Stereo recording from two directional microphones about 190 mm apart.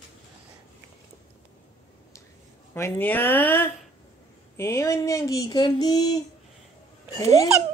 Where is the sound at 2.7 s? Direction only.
10° left (ahead or behind).